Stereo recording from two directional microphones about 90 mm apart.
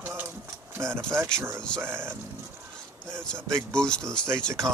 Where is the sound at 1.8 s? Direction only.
25° right (ahead or behind).